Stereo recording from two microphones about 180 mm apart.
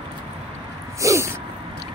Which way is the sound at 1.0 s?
15° right (ahead or behind).